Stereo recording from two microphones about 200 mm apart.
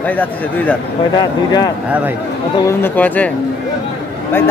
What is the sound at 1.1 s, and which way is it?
Speech, 20° left (ahead or behind).